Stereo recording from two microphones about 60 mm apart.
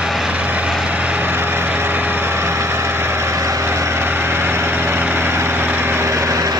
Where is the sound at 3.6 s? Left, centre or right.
Right.